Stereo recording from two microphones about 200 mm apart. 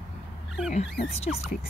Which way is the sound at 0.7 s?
30° left (ahead or behind).